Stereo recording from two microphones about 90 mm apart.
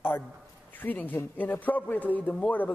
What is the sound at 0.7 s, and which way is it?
A man's voice, 20° left (ahead or behind).